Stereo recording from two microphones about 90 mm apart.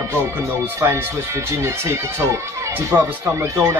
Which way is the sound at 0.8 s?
30° right (ahead or behind).